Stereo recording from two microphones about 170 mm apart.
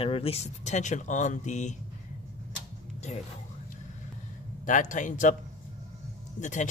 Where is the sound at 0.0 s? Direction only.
35° left (ahead or behind).